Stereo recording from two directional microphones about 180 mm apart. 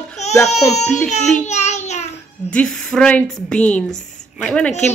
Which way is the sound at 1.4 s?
40° left (ahead or behind).